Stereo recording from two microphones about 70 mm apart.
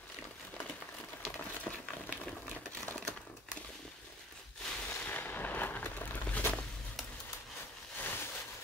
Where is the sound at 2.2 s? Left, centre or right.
Left.